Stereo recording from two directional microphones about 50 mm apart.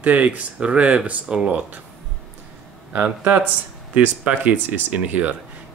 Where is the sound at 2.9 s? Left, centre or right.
Right.